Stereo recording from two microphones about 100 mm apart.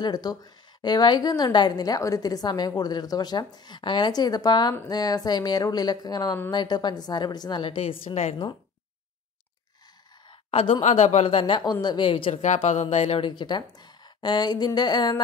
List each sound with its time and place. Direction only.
0.0 s a woman's voice: 40° left (ahead or behind)
7.8 s a woman's voice: 75° left (ahead or behind); by 8.5 s 60° left (ahead or behind)
10.5 s a woman's voice: 65° left (ahead or behind)
11.6 s a woman's voice: 45° left (ahead or behind)
12.1 s speech: 70° left (ahead or behind)
12.9 s speech: 85° left
13.3 s a woman's voice: 50° left (ahead or behind)